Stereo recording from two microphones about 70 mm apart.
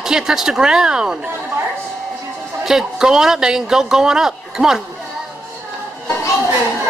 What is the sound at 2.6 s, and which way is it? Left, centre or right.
Speech, centre.